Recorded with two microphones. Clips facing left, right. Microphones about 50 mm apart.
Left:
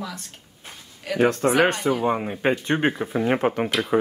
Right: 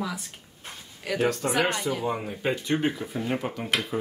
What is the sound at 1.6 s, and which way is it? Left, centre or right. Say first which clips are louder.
Speech: left 6 dB; left.